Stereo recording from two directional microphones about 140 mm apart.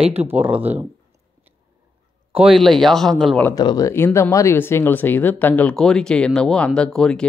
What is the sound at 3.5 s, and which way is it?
Speech, 30° left (ahead or behind).